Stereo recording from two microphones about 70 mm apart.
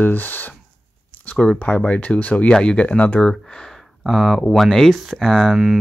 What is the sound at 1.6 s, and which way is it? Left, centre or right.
Speech, centre.